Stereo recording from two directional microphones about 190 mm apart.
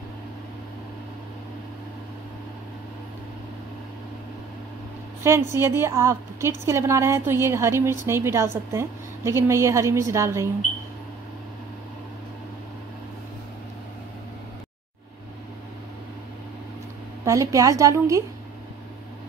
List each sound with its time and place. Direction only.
5.5 s a woman's voice: 15° right (ahead or behind)
17.2 s a woman's voice: 15° right (ahead or behind)